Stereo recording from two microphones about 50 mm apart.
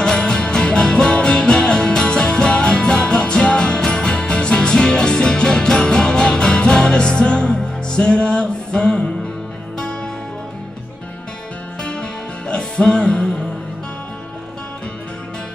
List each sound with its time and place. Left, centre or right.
0.0 s music: centre
11.8 s music: centre